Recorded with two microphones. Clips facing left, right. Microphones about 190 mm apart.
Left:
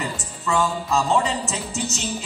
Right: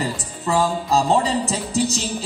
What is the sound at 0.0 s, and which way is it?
Music, 35° right (ahead or behind).